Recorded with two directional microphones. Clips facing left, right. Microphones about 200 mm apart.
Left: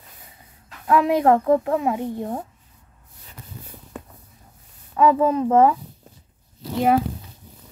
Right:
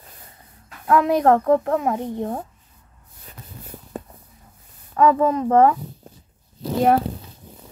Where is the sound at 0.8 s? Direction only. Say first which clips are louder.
Right 1 dB; 20° left (ahead or behind).